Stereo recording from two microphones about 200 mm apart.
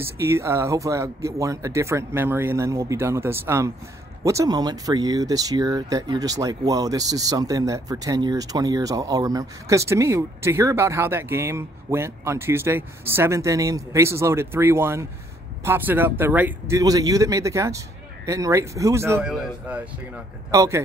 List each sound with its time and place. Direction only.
0.0 s a man's voice: 15° right (ahead or behind)